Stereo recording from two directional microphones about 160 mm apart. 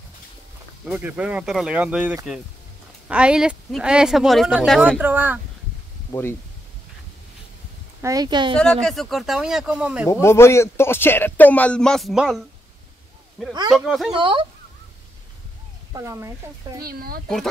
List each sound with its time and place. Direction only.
0.8 s speech: 5° right (ahead or behind)
5.0 s speech: 10° right (ahead or behind)
8.0 s speech: 20° right (ahead or behind)
8.5 s speech: 5° left (ahead or behind)
10.2 s speech: 15° left (ahead or behind); by 12.4 s centre (ahead or behind)
13.5 s speech: 25° right (ahead or behind)
13.7 s speech: 5° right (ahead or behind)
14.1 s speech: 30° right (ahead or behind)
15.9 s speech: 20° right (ahead or behind)
16.8 s speech: 70° right (ahead or behind)